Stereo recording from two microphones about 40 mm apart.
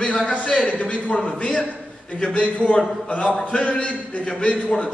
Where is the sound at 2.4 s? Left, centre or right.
Left.